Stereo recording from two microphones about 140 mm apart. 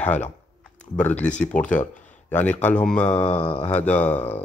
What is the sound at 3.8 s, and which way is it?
Speech, 10° left (ahead or behind).